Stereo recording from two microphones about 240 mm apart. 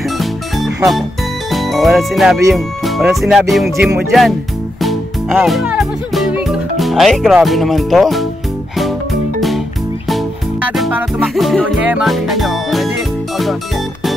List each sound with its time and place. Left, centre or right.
0.2 s music: centre
1.5 s speech: centre
2.5 s music: centre
10.0 s music: centre